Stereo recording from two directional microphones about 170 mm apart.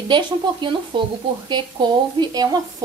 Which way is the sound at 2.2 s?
25° right (ahead or behind).